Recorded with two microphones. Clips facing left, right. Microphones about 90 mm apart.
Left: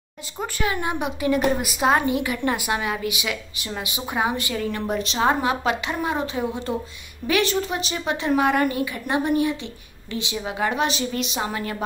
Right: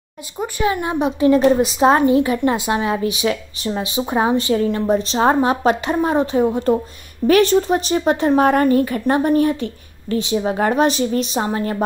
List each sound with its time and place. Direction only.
0.4 s speech: 15° right (ahead or behind)
0.8 s a woman's voice: 25° right (ahead or behind)